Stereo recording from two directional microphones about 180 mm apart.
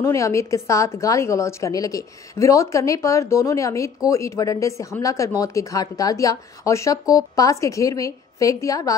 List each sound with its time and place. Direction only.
0.0 s speech: 15° left (ahead or behind)